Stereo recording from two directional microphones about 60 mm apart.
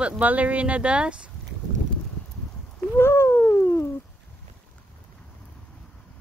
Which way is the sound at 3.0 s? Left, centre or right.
Left.